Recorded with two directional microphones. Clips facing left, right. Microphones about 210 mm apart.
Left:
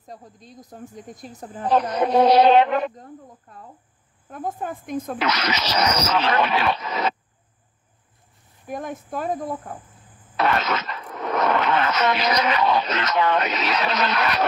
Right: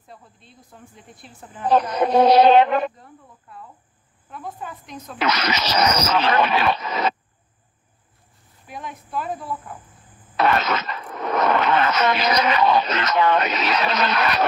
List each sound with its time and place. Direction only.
0.0 s speech: 40° left (ahead or behind)
2.3 s speech: 50° right (ahead or behind)
3.0 s speech: 40° left (ahead or behind)
5.2 s speech: 55° right (ahead or behind)
8.6 s speech: 45° left (ahead or behind)
10.4 s speech: 55° right (ahead or behind)